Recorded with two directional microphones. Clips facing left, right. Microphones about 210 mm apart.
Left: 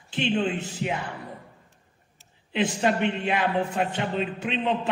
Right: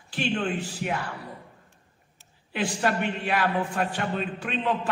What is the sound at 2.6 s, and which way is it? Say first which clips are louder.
A man's voice: left 3 dB; 20° left (ahead or behind).